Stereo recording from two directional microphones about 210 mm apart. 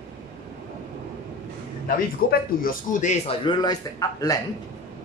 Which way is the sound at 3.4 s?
20° left (ahead or behind).